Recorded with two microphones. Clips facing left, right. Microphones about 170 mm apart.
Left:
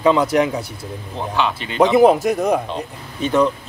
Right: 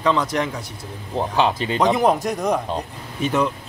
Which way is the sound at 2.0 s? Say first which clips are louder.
Left 6 dB; 5° left (ahead or behind).